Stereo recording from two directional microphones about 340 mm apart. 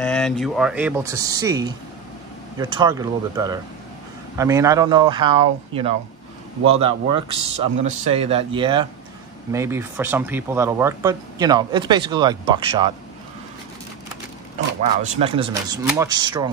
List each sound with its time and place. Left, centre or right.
0.0 s speech: centre
15.1 s speech: centre